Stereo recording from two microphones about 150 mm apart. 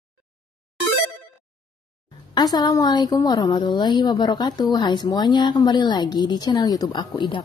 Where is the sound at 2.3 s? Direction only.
25° left (ahead or behind).